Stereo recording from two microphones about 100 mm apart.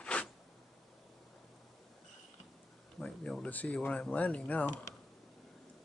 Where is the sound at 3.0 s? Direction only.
10° left (ahead or behind).